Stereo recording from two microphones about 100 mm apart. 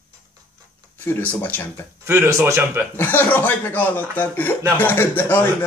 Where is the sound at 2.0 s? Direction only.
25° right (ahead or behind).